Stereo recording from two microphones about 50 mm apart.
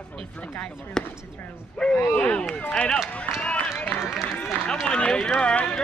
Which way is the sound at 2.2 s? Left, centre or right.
Left.